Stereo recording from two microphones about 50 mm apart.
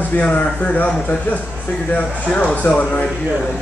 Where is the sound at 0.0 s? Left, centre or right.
Left.